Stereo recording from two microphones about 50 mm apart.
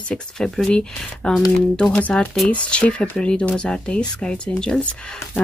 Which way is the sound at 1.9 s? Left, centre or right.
Left.